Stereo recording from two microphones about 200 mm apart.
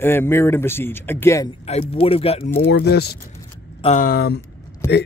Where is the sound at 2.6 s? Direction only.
50° left (ahead or behind).